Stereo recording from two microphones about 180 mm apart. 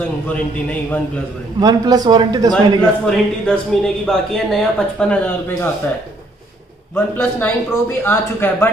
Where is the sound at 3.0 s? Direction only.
5° left (ahead or behind).